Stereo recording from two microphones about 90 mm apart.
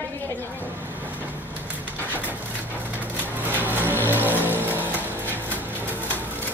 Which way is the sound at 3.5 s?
20° right (ahead or behind).